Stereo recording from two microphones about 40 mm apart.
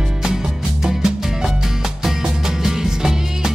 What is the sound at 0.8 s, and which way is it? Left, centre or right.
Music, centre.